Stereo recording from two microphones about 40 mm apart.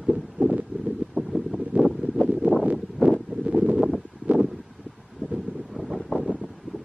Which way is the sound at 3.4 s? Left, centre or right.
Right.